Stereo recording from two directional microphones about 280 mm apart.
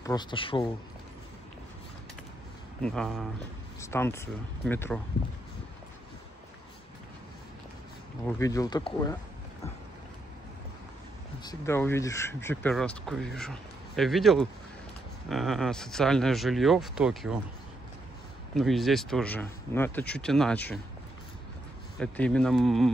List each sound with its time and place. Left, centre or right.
0.0 s speech: centre
2.8 s speech: centre
8.3 s speech: centre
11.4 s speech: centre
18.5 s speech: centre
21.9 s speech: centre